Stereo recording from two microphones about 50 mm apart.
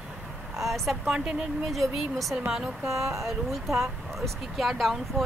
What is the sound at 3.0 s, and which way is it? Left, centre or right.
Speech, right.